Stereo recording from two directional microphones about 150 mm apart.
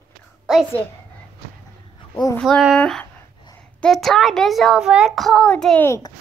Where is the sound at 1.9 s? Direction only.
25° left (ahead or behind).